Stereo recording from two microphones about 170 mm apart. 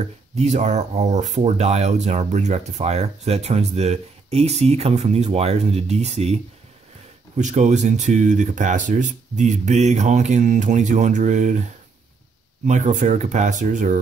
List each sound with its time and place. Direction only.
0.0 s speech: 40° right (ahead or behind)
12.6 s speech: 45° right (ahead or behind)